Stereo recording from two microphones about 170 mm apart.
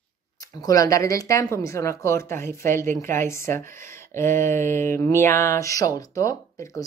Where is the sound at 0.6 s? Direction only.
20° left (ahead or behind).